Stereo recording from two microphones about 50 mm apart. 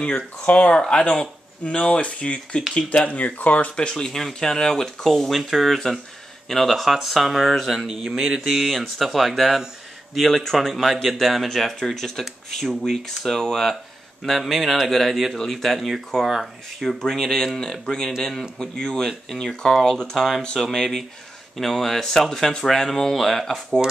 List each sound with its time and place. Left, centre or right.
0.0 s speech: left
3.7 s speech: centre